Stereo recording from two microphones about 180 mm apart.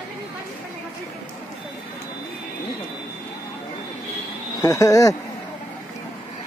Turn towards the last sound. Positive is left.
turn(degrees=20)  # may be behind; listen again after turning